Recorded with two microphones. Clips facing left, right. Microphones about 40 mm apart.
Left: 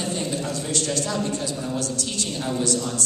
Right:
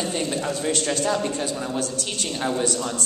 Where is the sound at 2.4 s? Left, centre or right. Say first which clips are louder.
Right 3 dB; right.